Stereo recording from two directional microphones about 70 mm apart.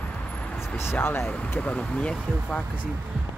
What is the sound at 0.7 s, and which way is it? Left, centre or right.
Speech, left.